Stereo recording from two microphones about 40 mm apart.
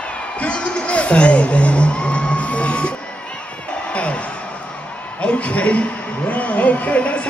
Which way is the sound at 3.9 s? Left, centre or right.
Left.